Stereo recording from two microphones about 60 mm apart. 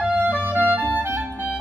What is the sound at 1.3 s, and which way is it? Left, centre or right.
Organ, right.